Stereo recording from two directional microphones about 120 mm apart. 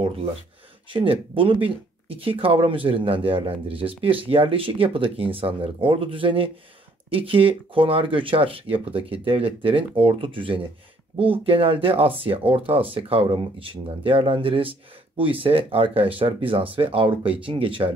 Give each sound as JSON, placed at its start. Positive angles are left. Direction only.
{"t": 0.8, "sound": "speech", "side_deg": -45}